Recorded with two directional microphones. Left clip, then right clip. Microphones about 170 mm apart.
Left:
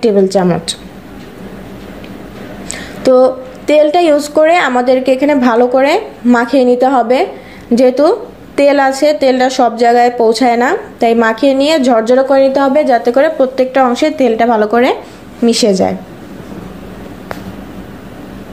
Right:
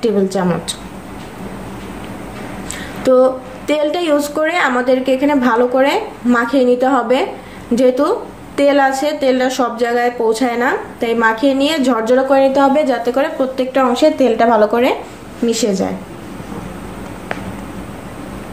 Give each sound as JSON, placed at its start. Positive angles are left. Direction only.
{"t": 0.0, "sound": "a woman's voice", "side_deg": 40}
{"t": 2.7, "sound": "a woman's voice", "side_deg": 35}